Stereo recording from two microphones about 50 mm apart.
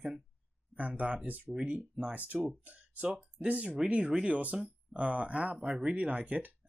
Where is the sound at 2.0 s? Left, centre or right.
Right.